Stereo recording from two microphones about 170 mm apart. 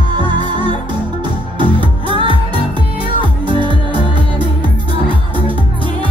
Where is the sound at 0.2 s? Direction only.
25° right (ahead or behind).